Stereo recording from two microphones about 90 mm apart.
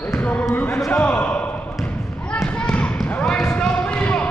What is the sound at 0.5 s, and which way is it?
Speech, 25° left (ahead or behind).